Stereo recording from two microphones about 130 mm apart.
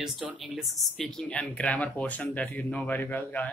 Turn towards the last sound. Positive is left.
turn(degrees=15)  # may be behind; listen again after turning